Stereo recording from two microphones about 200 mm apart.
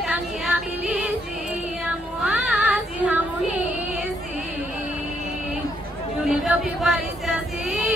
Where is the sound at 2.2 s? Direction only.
Centre (ahead or behind).